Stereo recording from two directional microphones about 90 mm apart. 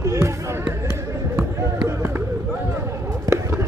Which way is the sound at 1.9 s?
30° right (ahead or behind).